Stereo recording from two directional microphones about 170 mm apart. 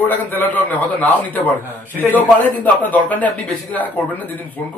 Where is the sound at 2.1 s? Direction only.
10° left (ahead or behind).